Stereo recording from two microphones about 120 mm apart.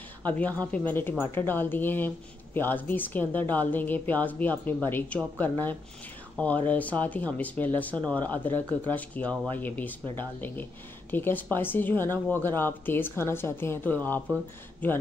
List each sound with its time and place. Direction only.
0.2 s a woman's voice: 15° left (ahead or behind)